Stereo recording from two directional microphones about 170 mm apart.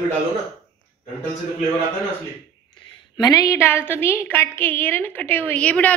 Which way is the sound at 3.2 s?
20° left (ahead or behind).